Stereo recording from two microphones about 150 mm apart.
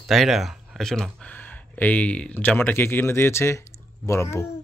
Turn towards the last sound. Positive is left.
turn(degrees=20)  # may be behind; listen again after turning